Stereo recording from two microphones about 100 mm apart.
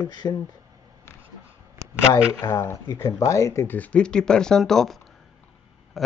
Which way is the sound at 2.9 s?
35° left (ahead or behind).